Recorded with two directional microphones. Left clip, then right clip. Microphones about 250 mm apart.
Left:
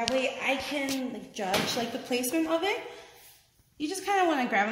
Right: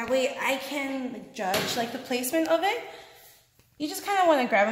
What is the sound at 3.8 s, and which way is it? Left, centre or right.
Speech, right.